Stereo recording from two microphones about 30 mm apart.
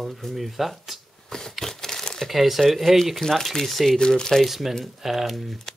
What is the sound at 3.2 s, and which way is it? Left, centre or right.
Speech, centre.